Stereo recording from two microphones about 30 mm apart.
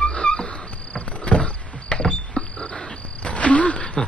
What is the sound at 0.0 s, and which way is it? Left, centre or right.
Cricket, left.